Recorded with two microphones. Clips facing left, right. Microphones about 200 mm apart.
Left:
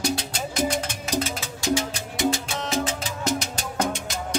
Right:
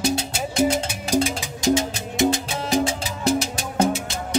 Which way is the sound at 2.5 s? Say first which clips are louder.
Right 5 dB; 10° right (ahead or behind).